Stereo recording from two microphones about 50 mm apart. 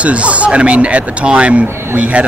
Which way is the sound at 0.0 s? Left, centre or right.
Right.